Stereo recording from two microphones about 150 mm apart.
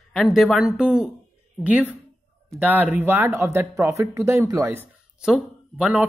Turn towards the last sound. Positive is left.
turn(degrees=-10)  # may be behind; listen again after turning